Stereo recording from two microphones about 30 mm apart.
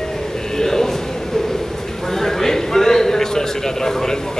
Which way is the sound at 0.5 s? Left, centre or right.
Centre.